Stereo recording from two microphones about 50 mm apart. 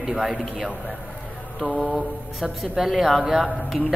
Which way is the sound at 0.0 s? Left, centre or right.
Centre.